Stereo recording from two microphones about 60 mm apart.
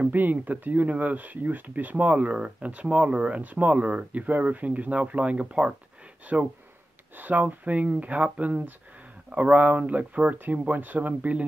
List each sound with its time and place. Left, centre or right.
0.1 s speech: right